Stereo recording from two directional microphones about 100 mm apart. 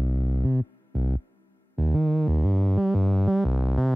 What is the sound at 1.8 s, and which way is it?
Synthesizer, centre (ahead or behind).